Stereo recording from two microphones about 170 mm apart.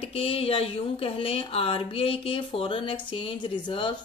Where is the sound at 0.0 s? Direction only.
35° left (ahead or behind).